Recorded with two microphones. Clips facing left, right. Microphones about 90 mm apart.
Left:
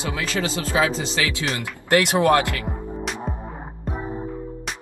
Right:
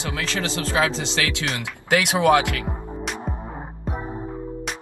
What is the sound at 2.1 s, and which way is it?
Speech, 15° right (ahead or behind).